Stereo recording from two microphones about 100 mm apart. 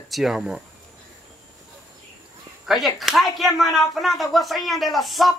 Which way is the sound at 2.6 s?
Centre (ahead or behind).